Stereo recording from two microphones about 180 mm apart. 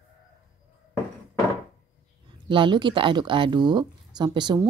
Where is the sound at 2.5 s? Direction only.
25° right (ahead or behind).